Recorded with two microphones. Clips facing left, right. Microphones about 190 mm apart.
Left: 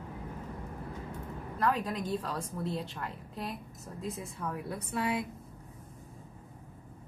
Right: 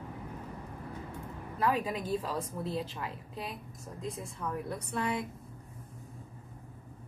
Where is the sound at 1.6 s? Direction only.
5° right (ahead or behind).